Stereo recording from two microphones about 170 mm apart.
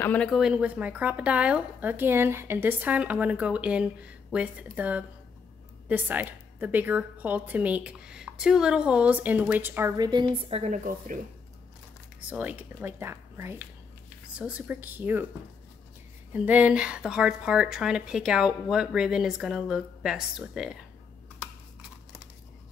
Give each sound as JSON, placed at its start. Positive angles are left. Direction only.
{"t": 0.0, "sound": "a woman's voice", "side_deg": 10}
{"t": 9.9, "sound": "a woman's voice", "side_deg": -25}
{"t": 10.2, "sound": "a woman's voice", "side_deg": -40}
{"t": 12.3, "sound": "a woman's voice", "side_deg": -10}
{"t": 16.3, "sound": "a woman's voice", "side_deg": -10}